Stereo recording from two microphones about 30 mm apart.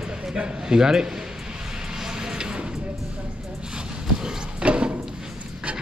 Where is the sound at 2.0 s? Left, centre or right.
Right.